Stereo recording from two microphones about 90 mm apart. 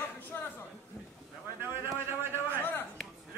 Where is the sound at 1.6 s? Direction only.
25° right (ahead or behind).